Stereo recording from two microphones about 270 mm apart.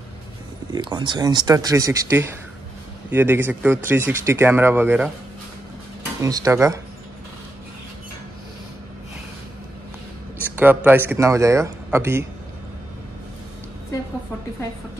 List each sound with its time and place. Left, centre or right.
0.7 s speech: centre
6.2 s speech: centre
10.5 s speech: centre